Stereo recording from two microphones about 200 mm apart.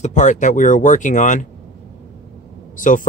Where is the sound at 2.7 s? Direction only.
40° left (ahead or behind).